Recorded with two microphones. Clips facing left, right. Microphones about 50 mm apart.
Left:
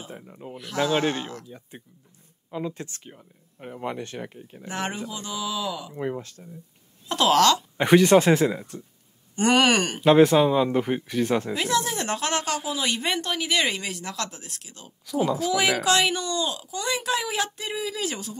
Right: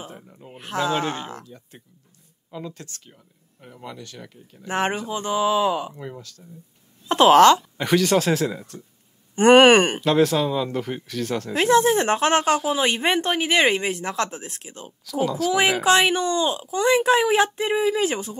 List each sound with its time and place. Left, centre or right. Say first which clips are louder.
0.1 s a sound: left 2 dB; centre
0.7 s speech: even; right
1.4 s speech: left 1 dB; centre
4.6 s speech: right 6 dB; right
5.9 s speech: left 6 dB; left
7.1 s speech: right 6 dB; right
7.7 s speech: left 3 dB; centre
9.3 s speech: right 8 dB; right
10.0 s speech: left 3 dB; centre
11.5 s speech: right 8 dB; right